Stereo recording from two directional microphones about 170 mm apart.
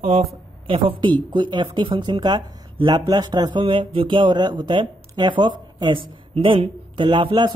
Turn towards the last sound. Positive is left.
turn(degrees=-30)  # may be behind; listen again after turning